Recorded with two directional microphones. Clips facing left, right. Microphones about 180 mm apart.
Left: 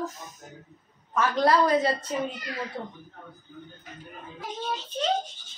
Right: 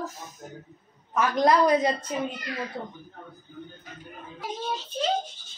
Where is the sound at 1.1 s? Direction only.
15° right (ahead or behind).